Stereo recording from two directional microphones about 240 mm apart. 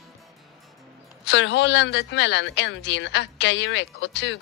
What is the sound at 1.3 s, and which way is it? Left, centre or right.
Speech, left.